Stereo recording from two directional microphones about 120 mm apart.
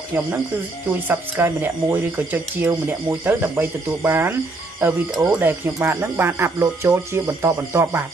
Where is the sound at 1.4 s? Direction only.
15° right (ahead or behind).